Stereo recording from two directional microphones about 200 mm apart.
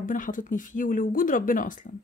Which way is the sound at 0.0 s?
40° left (ahead or behind).